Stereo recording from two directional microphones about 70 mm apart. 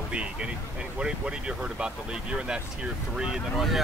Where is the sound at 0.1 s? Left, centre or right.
Centre.